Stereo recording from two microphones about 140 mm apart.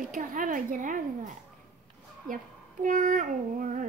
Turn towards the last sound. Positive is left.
turn(degrees=-65)  # may be behind; listen again after turning